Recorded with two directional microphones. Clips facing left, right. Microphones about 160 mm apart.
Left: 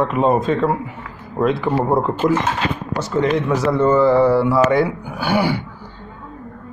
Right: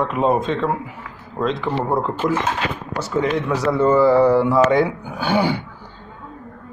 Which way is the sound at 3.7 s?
5° right (ahead or behind).